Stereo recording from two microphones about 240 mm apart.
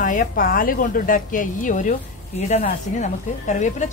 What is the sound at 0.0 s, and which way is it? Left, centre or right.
Speech, left.